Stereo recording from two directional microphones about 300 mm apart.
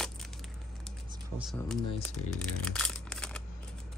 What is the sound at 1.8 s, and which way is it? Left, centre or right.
Speech, centre.